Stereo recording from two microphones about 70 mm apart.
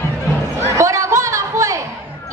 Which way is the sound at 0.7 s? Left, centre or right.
Right.